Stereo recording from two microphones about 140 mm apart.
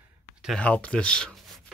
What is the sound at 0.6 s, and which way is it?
Speech, 10° left (ahead or behind).